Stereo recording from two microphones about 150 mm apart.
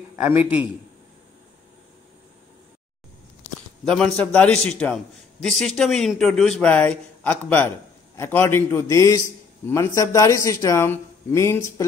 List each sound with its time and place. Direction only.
0.1 s a man's voice: 15° right (ahead or behind)
3.8 s a man's voice: 5° left (ahead or behind)